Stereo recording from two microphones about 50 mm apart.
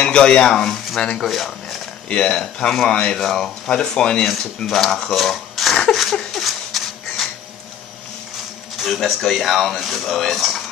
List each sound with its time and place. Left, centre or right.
0.0 s speech: centre
2.0 s speech: centre
2.4 s speech: centre
2.9 s speech: centre
4.6 s speech: centre
5.9 s a sound: centre
8.9 s speech: centre